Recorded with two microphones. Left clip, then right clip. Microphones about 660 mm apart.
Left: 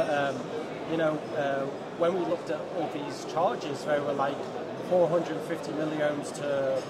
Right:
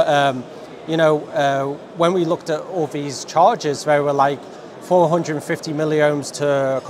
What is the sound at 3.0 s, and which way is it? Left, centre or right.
A man's voice, right.